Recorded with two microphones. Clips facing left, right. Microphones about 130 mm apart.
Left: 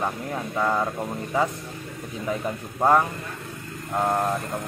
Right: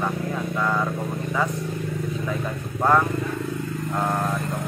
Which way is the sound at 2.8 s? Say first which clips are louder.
Even; 25° left (ahead or behind).